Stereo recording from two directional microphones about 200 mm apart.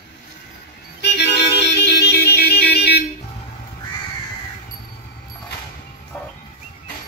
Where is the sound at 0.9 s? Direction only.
60° left (ahead or behind).